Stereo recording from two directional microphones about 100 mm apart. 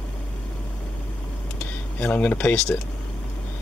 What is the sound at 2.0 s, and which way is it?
Speech, 15° left (ahead or behind).